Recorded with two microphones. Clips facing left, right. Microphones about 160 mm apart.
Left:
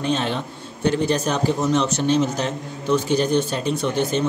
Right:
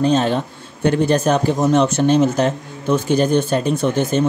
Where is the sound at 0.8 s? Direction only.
55° right (ahead or behind).